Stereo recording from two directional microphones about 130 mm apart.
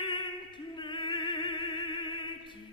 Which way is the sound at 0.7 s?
40° left (ahead or behind).